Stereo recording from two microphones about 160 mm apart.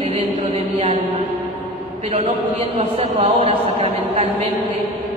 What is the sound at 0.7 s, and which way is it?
Speech, 40° right (ahead or behind).